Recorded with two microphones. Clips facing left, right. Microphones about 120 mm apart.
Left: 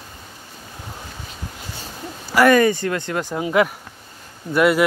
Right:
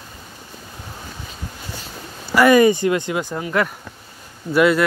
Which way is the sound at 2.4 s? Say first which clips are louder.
Right 2 dB; 15° right (ahead or behind).